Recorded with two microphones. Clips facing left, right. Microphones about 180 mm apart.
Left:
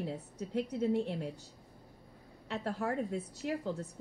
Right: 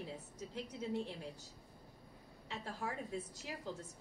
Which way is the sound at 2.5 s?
60° left (ahead or behind).